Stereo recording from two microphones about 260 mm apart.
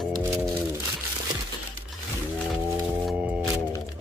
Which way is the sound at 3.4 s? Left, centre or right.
Centre.